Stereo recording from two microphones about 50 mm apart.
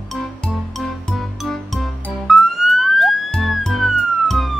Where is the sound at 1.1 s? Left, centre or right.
Centre.